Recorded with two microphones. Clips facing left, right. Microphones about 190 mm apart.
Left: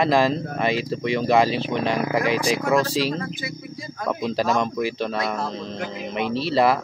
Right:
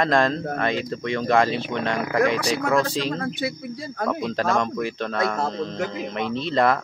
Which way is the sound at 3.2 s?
65° right (ahead or behind).